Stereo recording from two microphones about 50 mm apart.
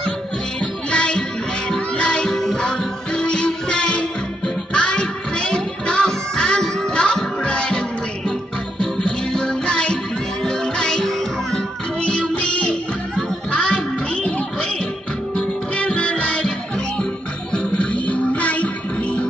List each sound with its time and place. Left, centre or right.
0.6 s music: left
12.0 s music: left